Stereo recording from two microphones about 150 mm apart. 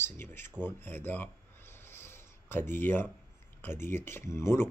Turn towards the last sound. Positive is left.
turn(degrees=15)  # may be behind; listen again after turning